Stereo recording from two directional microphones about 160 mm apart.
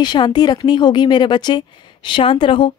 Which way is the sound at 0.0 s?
25° left (ahead or behind).